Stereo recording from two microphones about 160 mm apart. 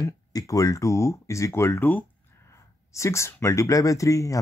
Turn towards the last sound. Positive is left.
turn(degrees=20)  # may be behind; listen again after turning